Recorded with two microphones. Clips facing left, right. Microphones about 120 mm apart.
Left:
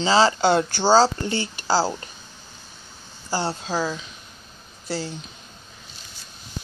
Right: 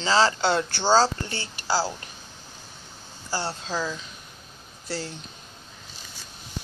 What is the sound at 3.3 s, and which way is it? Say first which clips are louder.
Speech: left 4 dB; 20° left (ahead or behind).